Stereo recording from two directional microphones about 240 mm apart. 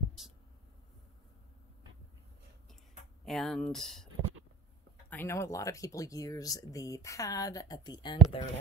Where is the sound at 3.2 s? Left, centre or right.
Centre.